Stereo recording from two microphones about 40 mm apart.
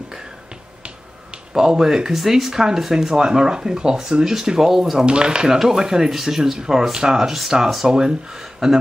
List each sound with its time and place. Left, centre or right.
1.5 s speech: centre
5.0 s speech: right; by 8.8 s centre